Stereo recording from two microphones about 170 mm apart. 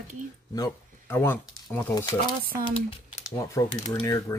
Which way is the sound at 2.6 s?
35° left (ahead or behind).